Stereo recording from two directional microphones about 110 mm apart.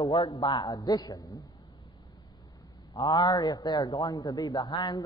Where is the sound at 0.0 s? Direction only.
35° left (ahead or behind).